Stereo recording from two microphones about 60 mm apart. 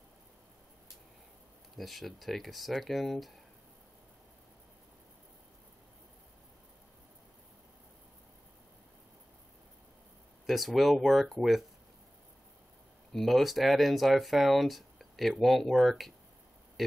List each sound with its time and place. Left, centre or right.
1.8 s speech: centre
10.4 s speech: centre
13.1 s speech: centre